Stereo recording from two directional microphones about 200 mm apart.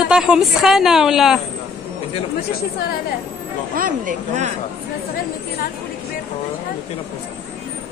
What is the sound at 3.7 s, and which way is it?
Speech, 45° right (ahead or behind).